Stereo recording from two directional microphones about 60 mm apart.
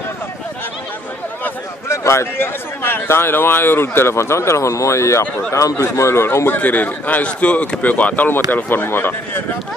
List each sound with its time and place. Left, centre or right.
1.9 s a man's voice: left
6.6 s a man's voice: left